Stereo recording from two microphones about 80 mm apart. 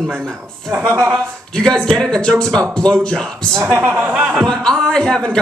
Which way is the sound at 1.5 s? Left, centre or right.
Centre.